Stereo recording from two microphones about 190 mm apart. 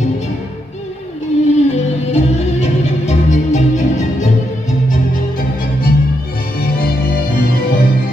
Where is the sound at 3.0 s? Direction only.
40° left (ahead or behind).